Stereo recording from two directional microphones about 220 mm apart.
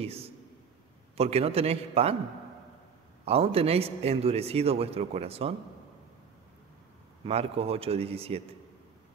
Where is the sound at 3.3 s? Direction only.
25° right (ahead or behind).